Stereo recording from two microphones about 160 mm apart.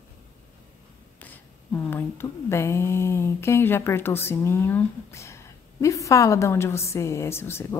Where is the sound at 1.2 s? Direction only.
10° left (ahead or behind).